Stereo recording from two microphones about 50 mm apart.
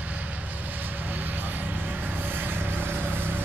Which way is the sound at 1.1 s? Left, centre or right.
Right.